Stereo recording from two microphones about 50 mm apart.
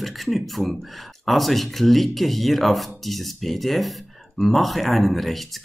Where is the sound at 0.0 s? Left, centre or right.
Centre.